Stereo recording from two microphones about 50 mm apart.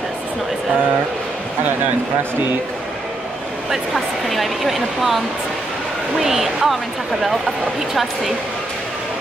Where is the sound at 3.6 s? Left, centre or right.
Centre.